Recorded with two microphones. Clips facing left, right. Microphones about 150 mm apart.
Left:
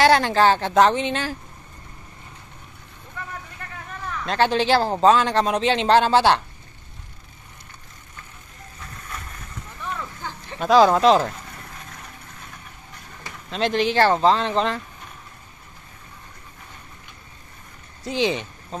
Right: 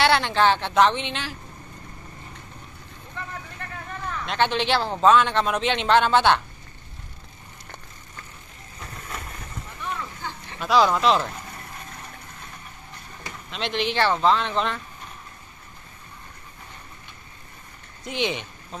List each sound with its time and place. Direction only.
0.0 s speech: 40° left (ahead or behind)
4.3 s speech: 40° left (ahead or behind)
10.6 s speech: 45° left (ahead or behind)
13.5 s speech: 40° left (ahead or behind)
18.0 s speech: 35° left (ahead or behind)